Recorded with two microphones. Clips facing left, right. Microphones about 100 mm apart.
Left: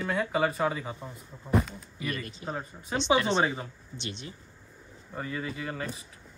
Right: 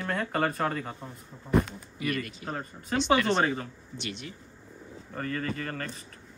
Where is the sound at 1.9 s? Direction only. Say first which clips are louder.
Right 4 dB; 25° left (ahead or behind).